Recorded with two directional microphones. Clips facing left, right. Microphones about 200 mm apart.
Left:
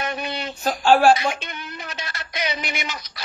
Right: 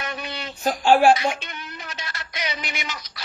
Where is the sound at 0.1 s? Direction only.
55° left (ahead or behind).